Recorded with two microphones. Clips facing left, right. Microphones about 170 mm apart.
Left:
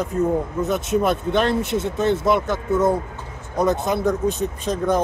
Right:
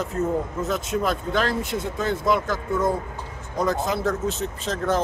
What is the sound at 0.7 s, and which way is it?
A man's voice, 20° left (ahead or behind).